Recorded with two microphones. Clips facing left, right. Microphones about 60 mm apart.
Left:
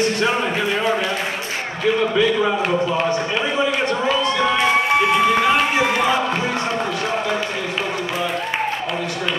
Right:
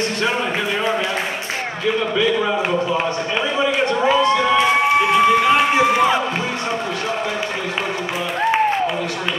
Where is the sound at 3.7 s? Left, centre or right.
Right.